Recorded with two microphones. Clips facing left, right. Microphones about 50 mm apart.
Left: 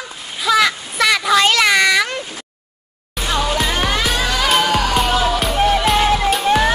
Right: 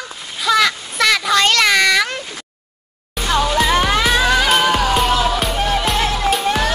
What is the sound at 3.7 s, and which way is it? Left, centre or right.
Music, right.